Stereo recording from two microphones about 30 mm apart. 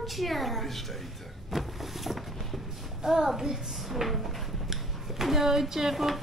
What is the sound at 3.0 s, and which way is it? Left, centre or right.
A child's voice, centre.